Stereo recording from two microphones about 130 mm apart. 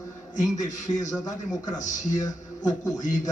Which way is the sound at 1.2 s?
30° left (ahead or behind).